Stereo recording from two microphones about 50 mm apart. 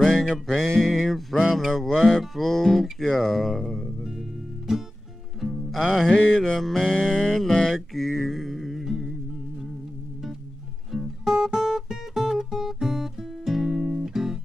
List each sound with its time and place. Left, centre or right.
0.6 s music: centre
4.0 s music: centre
6.1 s mantra: left
6.6 s music: centre
10.9 s guitar: centre